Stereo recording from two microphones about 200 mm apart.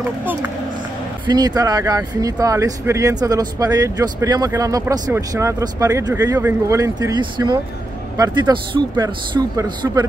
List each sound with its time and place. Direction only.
1.2 s speech: 20° right (ahead or behind)